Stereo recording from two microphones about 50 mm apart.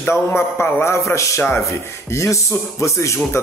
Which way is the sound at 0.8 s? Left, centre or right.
Left.